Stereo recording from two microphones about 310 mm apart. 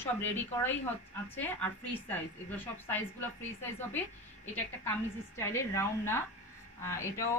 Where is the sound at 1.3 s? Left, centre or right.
Centre.